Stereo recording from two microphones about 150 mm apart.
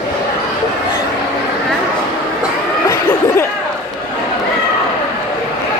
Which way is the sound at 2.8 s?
20° left (ahead or behind).